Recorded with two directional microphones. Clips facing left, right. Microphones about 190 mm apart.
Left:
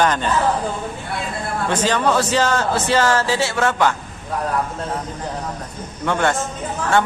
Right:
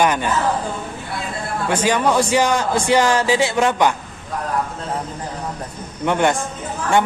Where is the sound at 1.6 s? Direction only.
10° right (ahead or behind).